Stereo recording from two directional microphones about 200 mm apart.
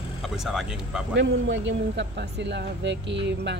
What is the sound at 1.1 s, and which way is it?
Speech, 65° right (ahead or behind).